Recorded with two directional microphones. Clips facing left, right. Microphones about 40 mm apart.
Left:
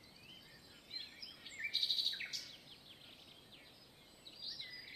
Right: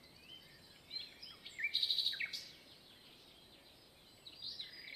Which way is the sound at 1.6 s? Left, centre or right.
Right.